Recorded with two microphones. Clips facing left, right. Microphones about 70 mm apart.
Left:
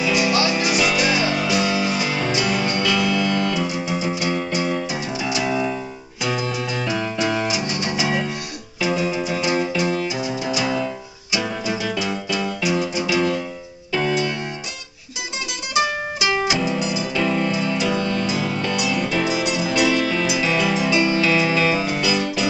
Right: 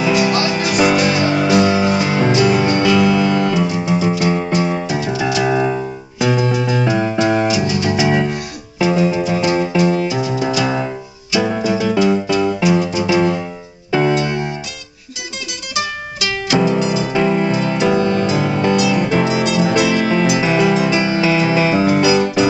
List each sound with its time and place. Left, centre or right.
0.0 s music: right
13.9 s keyboard: right
16.3 s music: centre
16.5 s music: right